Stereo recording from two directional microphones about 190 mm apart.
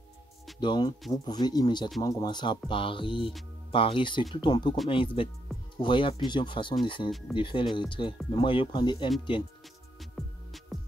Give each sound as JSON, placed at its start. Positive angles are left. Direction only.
{"t": 0.6, "sound": "speech", "side_deg": 25}
{"t": 7.1, "sound": "speech", "side_deg": 0}
{"t": 7.3, "sound": "speech", "side_deg": 25}
{"t": 9.9, "sound": "music", "side_deg": 0}